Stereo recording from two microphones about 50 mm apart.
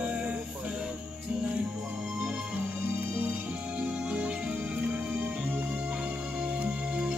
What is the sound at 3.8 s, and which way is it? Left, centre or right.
Music, right.